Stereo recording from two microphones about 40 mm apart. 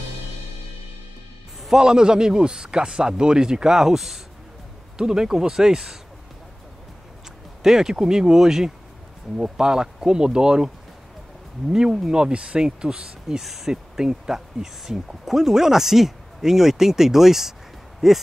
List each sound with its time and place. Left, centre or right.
1.6 s speech: centre
4.9 s speech: centre
7.6 s speech: centre
12.1 s speech: right
13.4 s speech: centre